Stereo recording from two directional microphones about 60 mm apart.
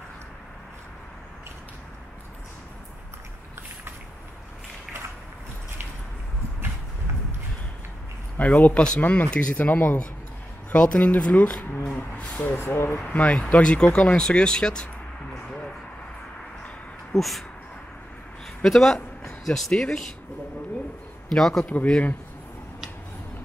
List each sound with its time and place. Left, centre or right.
8.4 s speech: left
12.2 s a sound: left
12.4 s speech: left
13.0 s speech: left
17.1 s a man's voice: centre
18.6 s a man's voice: centre
21.3 s speech: centre